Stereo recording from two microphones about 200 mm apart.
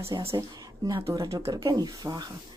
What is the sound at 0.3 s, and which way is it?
Speech, 15° right (ahead or behind).